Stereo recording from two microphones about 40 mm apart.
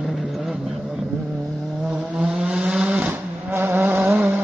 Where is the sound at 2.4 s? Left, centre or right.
Right.